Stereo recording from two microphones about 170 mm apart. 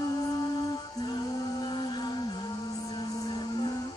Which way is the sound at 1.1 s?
25° left (ahead or behind).